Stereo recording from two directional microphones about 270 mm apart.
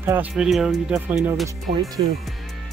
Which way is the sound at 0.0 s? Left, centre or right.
Centre.